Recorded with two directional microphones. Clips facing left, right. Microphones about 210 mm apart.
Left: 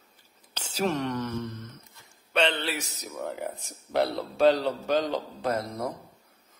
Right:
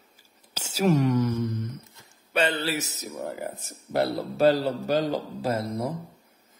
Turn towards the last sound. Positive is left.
turn(degrees=-5)  # may be behind; listen again after turning